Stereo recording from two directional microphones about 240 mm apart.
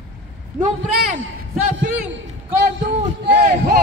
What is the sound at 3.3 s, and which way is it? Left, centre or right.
Speech, right.